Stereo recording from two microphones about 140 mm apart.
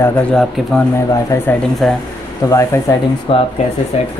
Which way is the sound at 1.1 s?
20° left (ahead or behind).